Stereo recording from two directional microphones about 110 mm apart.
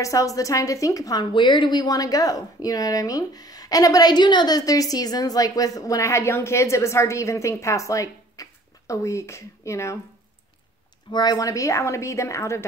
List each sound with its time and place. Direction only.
0.0 s a woman's voice: 30° left (ahead or behind)
1.3 s speech: 45° left (ahead or behind); by 9.9 s 25° left (ahead or behind)
11.1 s a woman's voice: 40° left (ahead or behind)